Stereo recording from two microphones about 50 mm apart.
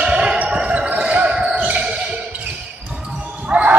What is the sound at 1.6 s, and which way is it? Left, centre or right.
Music, centre.